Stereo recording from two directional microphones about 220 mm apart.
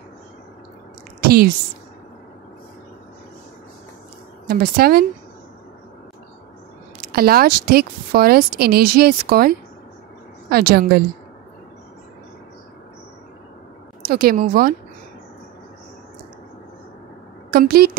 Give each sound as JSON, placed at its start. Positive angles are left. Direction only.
{"t": 1.2, "sound": "a sound", "side_deg": -45}
{"t": 4.5, "sound": "a woman's voice", "side_deg": -45}
{"t": 7.0, "sound": "a woman's voice", "side_deg": -45}
{"t": 14.0, "sound": "a woman's voice", "side_deg": -45}
{"t": 17.5, "sound": "a woman's voice", "side_deg": -45}